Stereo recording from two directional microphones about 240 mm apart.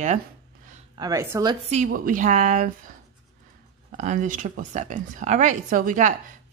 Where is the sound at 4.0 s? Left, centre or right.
Right.